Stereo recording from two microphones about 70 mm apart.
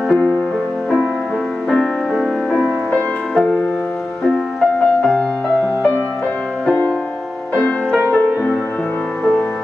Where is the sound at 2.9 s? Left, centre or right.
Centre.